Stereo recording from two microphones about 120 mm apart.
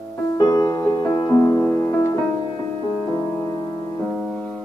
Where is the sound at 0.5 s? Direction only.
25° left (ahead or behind).